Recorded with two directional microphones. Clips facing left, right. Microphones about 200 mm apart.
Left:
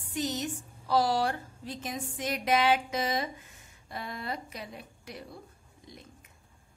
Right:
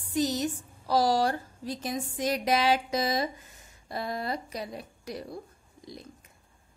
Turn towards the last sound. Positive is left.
turn(degrees=-35)  # may be behind; listen again after turning